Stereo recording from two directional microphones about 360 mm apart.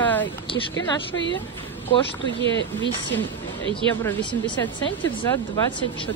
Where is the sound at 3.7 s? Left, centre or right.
Centre.